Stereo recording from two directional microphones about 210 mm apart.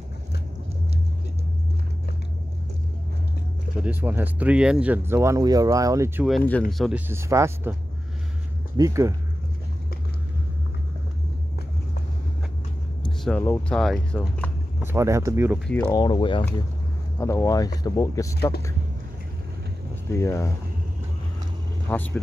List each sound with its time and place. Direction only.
3.8 s speech: 10° right (ahead or behind)
7.1 s speech: 15° right (ahead or behind)
8.7 s speech: 15° right (ahead or behind)
13.2 s speech: 10° left (ahead or behind)
14.8 s speech: 10° right (ahead or behind)
15.6 s speech: 5° left (ahead or behind)
15.9 s speech: 20° left (ahead or behind)
20.1 s speech: 15° left (ahead or behind)
21.8 s speech: 10° left (ahead or behind)